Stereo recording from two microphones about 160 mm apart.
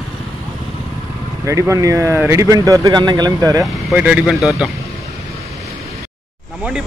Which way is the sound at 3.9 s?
10° right (ahead or behind).